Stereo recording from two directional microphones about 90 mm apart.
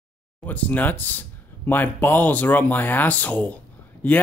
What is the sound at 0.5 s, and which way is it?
Speech, 15° left (ahead or behind).